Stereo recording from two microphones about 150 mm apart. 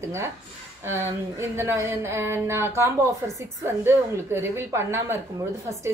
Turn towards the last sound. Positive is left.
turn(degrees=-20)  # may be behind; listen again after turning